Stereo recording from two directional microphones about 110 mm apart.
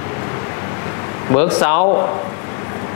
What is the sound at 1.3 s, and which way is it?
Speech, 20° left (ahead or behind).